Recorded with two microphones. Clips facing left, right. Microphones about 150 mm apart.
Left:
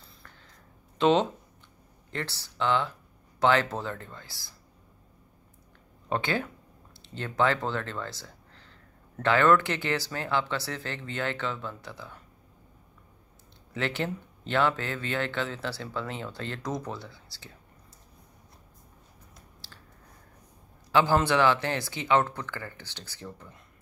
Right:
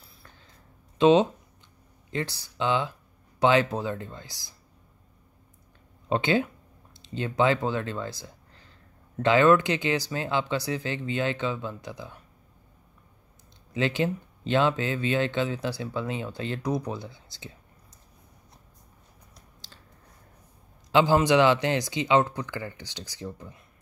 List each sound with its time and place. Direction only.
0.9 s speech: 15° right (ahead or behind)
6.0 s speech: 20° right (ahead or behind)
13.7 s speech: 15° right (ahead or behind)
20.9 s speech: 15° right (ahead or behind)